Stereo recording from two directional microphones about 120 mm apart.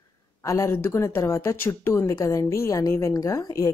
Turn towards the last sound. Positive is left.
turn(degrees=25)  # may be behind; listen again after turning